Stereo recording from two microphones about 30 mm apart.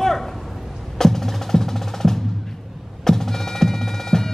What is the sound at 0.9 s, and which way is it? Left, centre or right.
Music, centre.